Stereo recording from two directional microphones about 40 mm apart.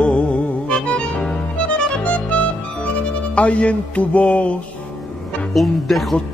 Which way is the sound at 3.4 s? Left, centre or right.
Left.